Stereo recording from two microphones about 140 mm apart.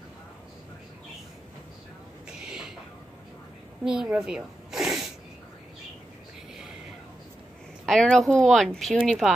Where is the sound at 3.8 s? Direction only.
5° right (ahead or behind).